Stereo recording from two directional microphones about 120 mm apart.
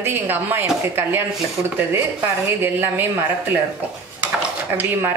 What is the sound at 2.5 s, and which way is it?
Speech, 20° right (ahead or behind).